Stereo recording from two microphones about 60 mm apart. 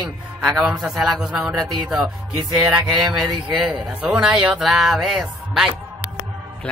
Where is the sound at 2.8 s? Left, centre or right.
Centre.